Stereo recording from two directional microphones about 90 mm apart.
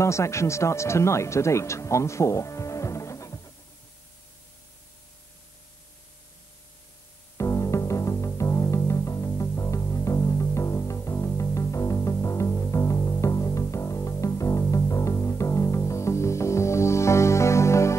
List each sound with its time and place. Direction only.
0.0 s speech: 35° left (ahead or behind)
7.3 s music: 35° left (ahead or behind)